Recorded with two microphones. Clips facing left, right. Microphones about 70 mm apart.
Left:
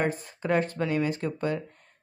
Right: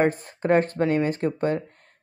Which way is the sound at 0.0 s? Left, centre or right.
Right.